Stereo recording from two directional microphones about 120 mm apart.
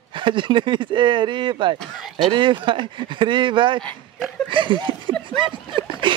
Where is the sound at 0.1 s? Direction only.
45° right (ahead or behind).